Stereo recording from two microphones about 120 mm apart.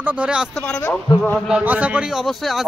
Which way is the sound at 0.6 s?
15° left (ahead or behind).